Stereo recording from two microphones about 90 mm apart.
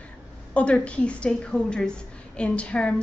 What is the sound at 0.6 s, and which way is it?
A woman's voice, 15° left (ahead or behind).